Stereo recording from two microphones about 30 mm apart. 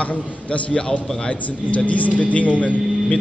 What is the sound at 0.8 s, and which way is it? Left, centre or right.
Speech, left.